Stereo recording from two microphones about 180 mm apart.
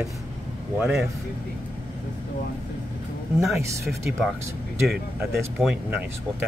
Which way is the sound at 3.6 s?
15° right (ahead or behind).